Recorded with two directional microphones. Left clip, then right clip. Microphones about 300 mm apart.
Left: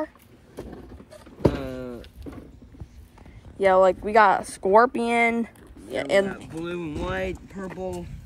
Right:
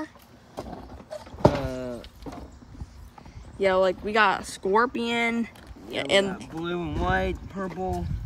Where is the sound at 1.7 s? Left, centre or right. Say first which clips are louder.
Right 2 dB; centre.